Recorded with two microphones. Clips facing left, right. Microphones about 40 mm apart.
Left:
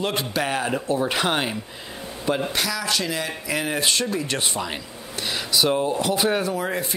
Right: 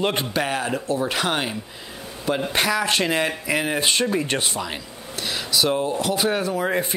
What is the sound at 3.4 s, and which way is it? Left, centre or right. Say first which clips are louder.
Speech: right 2 dB; centre.